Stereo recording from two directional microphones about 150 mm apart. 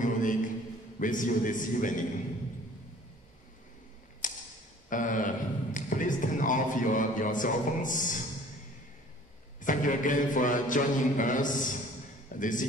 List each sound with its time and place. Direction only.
0.0 s a sound: 60° left (ahead or behind)
0.9 s a man's voice: 60° left (ahead or behind)
4.2 s tick-tock: 60° left (ahead or behind)
4.8 s a man's voice: 60° left (ahead or behind)
9.6 s a man's voice: 60° left (ahead or behind)